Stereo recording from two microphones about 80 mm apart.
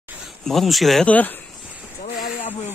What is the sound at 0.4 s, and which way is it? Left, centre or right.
Speech, centre.